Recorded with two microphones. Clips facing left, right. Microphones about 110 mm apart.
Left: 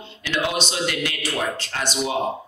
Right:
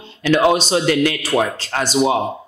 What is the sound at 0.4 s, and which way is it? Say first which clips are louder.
Speech: right 7 dB; 35° right (ahead or behind).